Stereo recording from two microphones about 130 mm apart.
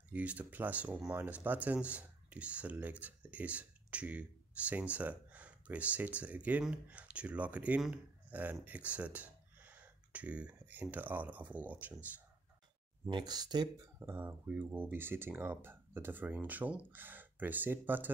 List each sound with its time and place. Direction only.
0.1 s speech: 10° right (ahead or behind)
13.1 s speech: 30° right (ahead or behind)
13.9 s speech: 15° right (ahead or behind)